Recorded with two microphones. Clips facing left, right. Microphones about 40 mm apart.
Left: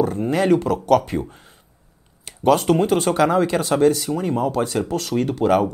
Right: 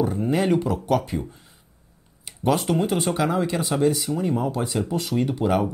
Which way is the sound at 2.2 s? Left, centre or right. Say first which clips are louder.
Left 6 dB; centre.